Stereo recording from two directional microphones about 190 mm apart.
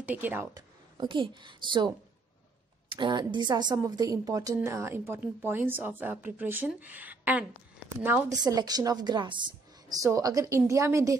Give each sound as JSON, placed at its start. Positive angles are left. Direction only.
{"t": 0.0, "sound": "a woman's voice", "side_deg": -10}